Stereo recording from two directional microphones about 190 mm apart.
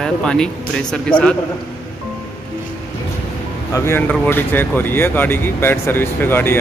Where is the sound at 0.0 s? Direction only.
5° left (ahead or behind).